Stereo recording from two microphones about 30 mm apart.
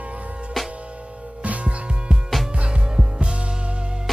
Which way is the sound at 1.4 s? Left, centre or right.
Right.